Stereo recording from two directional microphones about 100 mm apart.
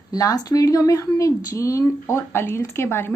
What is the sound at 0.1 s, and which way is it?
Speech, 35° left (ahead or behind).